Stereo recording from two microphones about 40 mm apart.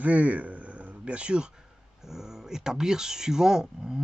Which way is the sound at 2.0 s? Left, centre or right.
Centre.